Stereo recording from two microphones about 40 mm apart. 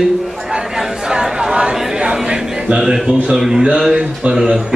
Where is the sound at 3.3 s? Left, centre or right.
Centre.